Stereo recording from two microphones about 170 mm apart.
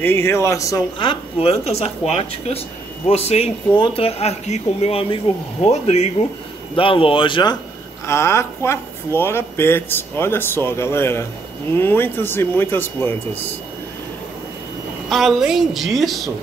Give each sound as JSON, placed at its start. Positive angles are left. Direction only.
{"t": 0.0, "sound": "speech", "side_deg": 15}
{"t": 8.1, "sound": "speech", "side_deg": 15}
{"t": 15.0, "sound": "a woman's voice", "side_deg": 0}